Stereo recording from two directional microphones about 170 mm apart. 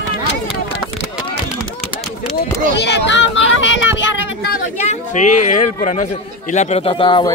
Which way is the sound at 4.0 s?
90° left.